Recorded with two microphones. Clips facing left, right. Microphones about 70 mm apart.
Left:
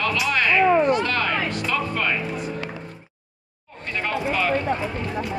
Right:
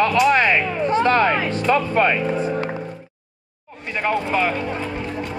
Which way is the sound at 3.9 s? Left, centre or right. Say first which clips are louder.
Right 5 dB; centre.